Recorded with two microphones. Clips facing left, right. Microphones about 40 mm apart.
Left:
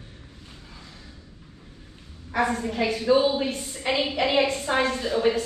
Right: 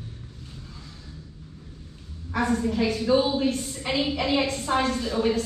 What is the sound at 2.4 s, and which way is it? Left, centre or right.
A woman's voice, left.